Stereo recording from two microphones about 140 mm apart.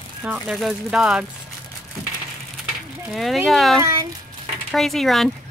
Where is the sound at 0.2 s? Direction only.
10° right (ahead or behind).